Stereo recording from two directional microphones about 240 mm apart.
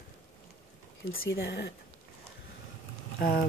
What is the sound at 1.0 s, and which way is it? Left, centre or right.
Speech, left.